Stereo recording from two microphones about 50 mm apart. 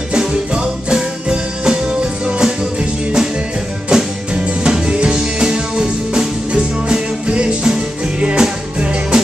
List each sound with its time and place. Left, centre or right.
0.1 s music: centre